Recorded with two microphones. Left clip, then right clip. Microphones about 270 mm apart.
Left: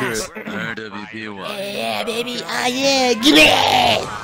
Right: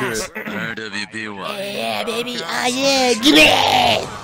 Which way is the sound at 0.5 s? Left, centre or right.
Centre.